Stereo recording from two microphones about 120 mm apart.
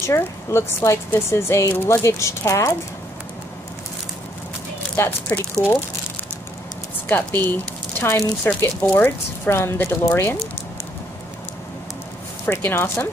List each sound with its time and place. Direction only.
0.0 s speech: 20° left (ahead or behind)
4.9 s speech: 20° left (ahead or behind)
7.1 s speech: 15° left (ahead or behind)
12.4 s speech: 20° left (ahead or behind)